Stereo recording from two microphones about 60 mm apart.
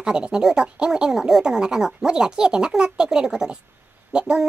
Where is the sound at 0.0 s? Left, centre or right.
Centre.